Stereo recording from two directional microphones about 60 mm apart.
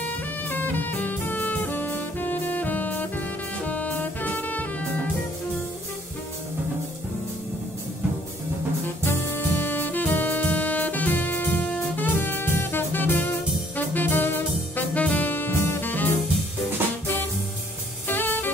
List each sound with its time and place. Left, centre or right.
0.0 s music: left
3.6 s saxophone: left
8.8 s music: left
18.0 s jazz: left